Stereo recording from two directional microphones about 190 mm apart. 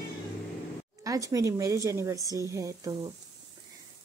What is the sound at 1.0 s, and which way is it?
Speech, 20° right (ahead or behind).